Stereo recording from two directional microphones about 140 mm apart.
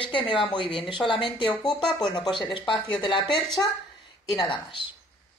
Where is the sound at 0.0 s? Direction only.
35° left (ahead or behind).